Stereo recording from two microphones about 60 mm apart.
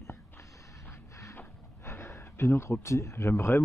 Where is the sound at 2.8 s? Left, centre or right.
Left.